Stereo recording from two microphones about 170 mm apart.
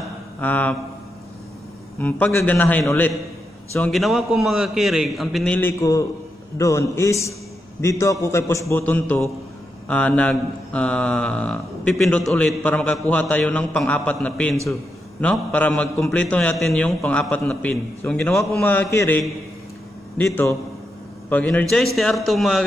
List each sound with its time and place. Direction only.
0.4 s speech: 10° left (ahead or behind)
2.0 s a man's voice: 10° left (ahead or behind)